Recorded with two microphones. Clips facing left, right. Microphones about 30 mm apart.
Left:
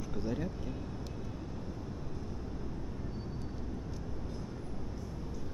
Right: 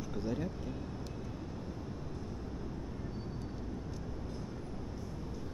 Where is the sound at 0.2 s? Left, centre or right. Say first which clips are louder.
Even; centre.